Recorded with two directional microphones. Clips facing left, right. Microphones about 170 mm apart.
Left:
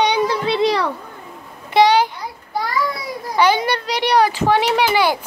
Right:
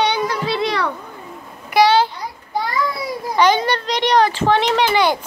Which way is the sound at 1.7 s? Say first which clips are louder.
Even; 15° left (ahead or behind).